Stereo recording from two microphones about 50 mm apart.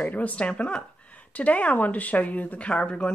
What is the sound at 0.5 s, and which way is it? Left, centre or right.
A woman's voice, centre.